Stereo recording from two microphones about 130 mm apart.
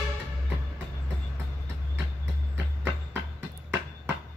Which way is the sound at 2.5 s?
10° right (ahead or behind).